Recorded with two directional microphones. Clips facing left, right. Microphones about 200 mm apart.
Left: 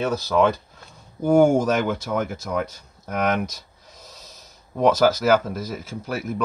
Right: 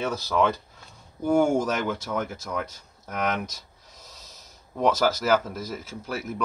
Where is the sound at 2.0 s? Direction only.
10° left (ahead or behind).